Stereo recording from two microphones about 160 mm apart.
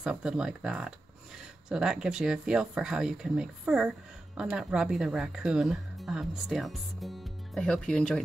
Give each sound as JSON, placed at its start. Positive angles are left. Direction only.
{"t": 0.0, "sound": "speech", "side_deg": -5}